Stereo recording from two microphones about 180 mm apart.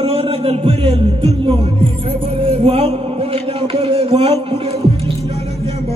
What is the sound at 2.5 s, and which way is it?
Mantra, 30° right (ahead or behind).